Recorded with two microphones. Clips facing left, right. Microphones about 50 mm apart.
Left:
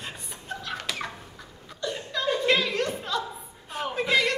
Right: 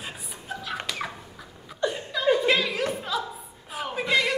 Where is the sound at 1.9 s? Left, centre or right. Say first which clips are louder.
Right 4 dB; centre.